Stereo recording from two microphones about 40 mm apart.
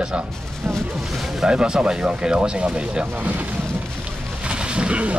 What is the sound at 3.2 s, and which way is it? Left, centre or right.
Speech, right.